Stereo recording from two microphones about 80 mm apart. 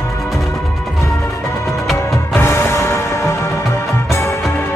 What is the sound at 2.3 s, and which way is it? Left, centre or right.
Music, left.